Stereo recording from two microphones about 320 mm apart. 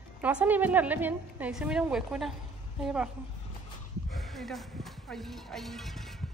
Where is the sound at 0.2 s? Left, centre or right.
Centre.